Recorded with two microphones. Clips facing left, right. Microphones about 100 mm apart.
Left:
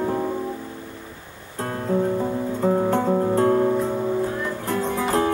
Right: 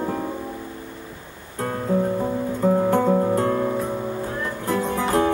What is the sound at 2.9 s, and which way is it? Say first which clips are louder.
Music: right 1 dB; 35° left (ahead or behind).